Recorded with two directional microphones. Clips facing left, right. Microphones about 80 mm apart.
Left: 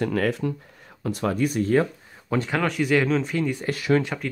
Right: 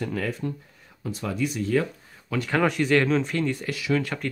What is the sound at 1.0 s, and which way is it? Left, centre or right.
Speech, left.